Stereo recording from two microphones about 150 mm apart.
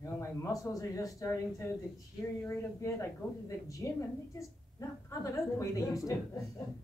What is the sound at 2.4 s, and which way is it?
A woman's voice, 20° left (ahead or behind).